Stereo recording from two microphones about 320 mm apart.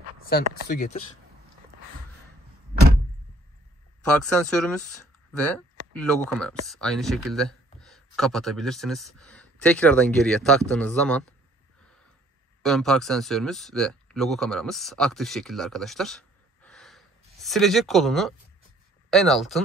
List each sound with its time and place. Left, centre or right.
0.3 s speech: left
4.0 s speech: centre
5.9 s speech: centre
12.6 s speech: centre